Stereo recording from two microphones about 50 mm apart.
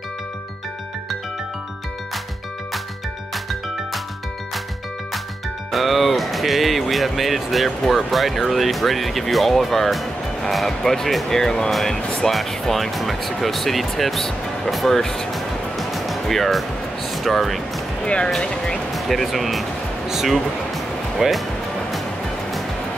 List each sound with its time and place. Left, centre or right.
5.7 s speech: centre
18.0 s speech: centre
18.9 s speech: centre
20.1 s music: centre